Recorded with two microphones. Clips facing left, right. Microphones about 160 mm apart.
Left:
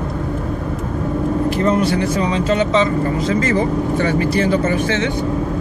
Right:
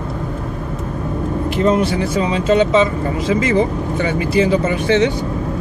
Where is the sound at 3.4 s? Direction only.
10° right (ahead or behind).